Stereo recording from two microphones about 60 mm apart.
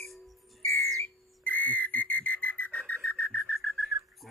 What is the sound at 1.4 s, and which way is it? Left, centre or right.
Whistle, left.